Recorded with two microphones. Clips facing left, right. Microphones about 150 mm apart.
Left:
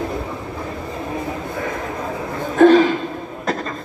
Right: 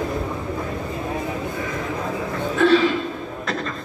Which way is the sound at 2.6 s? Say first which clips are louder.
Left 6 dB; 45° left (ahead or behind).